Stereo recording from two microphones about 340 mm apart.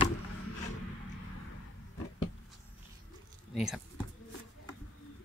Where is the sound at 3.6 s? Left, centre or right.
Centre.